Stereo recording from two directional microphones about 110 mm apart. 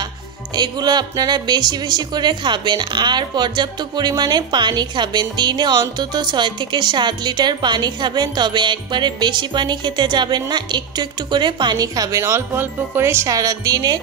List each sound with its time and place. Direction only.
0.6 s speech: 40° right (ahead or behind)